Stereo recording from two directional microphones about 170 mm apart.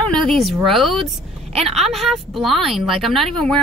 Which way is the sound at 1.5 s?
40° right (ahead or behind).